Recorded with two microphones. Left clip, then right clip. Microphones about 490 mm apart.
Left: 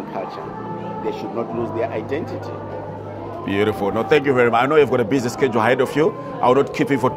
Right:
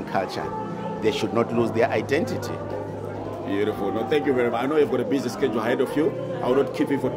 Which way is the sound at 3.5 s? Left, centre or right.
Left.